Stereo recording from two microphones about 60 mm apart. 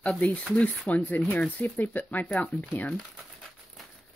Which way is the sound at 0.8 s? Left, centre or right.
Left.